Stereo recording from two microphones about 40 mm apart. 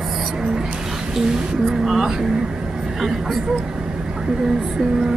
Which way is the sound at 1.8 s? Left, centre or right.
Centre.